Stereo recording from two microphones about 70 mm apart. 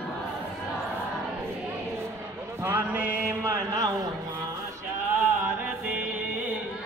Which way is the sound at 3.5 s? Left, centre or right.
Right.